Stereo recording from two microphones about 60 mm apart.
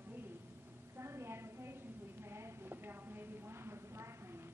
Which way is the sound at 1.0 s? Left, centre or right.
Right.